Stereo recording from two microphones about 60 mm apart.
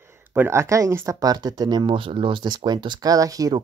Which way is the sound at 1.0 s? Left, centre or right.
Right.